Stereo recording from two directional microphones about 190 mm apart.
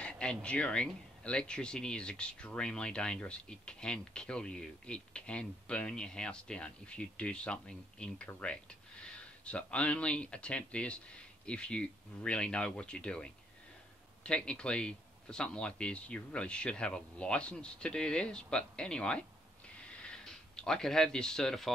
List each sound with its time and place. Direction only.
0.0 s speech: 5° left (ahead or behind)